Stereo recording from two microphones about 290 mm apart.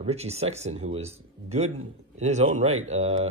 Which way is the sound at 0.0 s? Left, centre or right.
Right.